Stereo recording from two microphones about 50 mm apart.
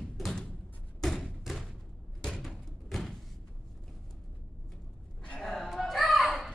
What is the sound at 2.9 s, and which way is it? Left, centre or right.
Door, centre.